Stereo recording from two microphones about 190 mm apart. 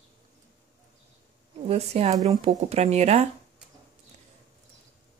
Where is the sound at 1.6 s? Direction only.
35° right (ahead or behind).